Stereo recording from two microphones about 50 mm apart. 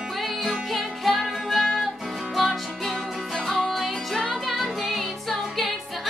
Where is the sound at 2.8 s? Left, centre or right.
Centre.